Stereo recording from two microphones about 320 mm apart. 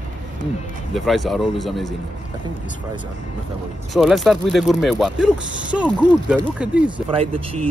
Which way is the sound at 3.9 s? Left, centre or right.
Centre.